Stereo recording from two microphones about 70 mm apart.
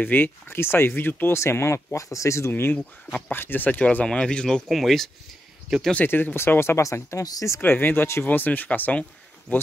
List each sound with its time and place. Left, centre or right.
0.0 s speech: left
1.4 s speech: left
2.5 s speech: left; by 4.6 s centre
4.6 s speech: centre
5.9 s speech: left
7.5 s speech: left